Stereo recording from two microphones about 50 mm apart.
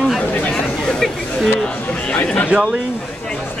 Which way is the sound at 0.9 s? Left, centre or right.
Centre.